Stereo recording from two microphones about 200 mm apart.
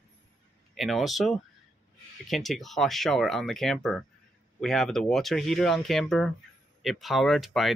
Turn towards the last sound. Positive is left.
turn(degrees=0)  # may be behind; listen again after turning